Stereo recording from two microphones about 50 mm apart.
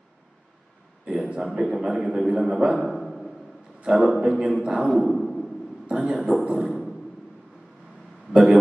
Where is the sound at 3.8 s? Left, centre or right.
Centre.